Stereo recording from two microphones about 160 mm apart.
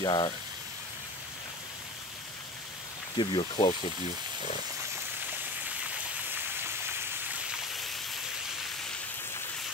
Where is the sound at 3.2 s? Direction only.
30° left (ahead or behind).